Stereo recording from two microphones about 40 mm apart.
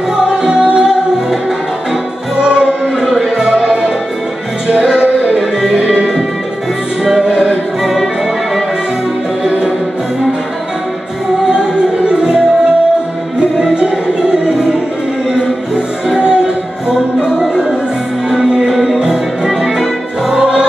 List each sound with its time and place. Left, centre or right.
0.3 s music: centre
2.4 s music: centre
7.1 s music: centre
7.8 s music: centre
12.1 s music: centre
13.7 s music: right
18.4 s music: centre
18.7 s music: centre